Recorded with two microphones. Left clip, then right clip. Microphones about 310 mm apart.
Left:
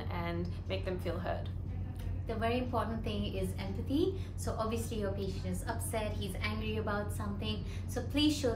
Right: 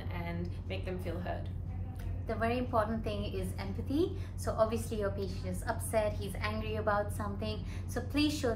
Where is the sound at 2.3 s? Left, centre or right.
Centre.